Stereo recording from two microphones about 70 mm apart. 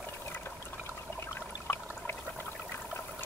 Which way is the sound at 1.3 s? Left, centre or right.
Left.